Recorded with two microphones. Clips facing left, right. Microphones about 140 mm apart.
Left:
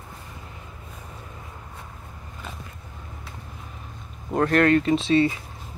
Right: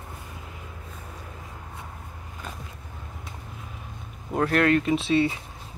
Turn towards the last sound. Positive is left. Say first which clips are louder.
# left 3 dB
turn(degrees=-5)  # may be behind; listen again after turning